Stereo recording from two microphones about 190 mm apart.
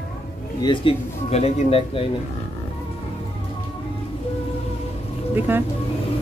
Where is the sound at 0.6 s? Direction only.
25° left (ahead or behind).